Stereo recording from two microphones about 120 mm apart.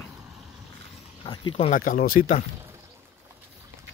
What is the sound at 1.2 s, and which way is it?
Speech, 40° left (ahead or behind).